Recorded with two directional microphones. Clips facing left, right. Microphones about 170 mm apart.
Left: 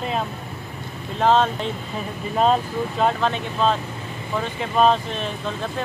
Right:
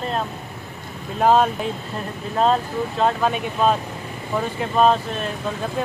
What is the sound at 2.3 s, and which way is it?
Speech, 5° left (ahead or behind).